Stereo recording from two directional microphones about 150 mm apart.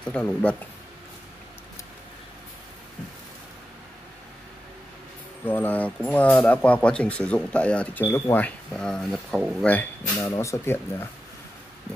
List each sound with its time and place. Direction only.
0.1 s speech: 10° left (ahead or behind)
5.4 s speech: 15° left (ahead or behind)